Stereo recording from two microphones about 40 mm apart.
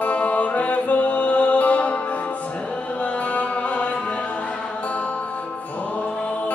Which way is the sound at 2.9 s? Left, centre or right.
Left.